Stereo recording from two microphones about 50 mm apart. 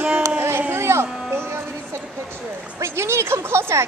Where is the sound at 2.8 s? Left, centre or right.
Right.